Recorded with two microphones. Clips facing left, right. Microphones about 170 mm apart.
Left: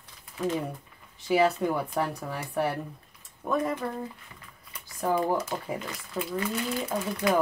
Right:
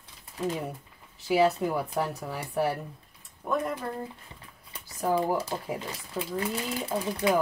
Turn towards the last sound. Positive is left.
turn(degrees=-30)  # may be behind; listen again after turning